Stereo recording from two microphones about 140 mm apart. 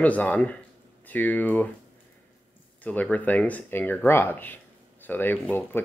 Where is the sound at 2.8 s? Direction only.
10° left (ahead or behind).